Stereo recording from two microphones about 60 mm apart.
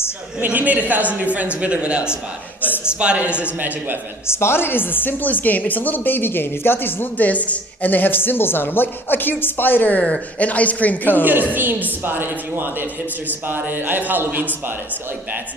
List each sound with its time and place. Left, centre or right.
0.4 s a woman's voice: right
2.6 s a sound: left
3.0 s a woman's voice: right
4.3 s a woman's voice: left
11.2 s a man's voice: right